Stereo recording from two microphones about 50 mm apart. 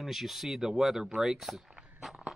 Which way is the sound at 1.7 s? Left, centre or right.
Centre.